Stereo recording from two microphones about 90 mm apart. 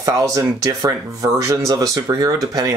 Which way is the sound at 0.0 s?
40° right (ahead or behind).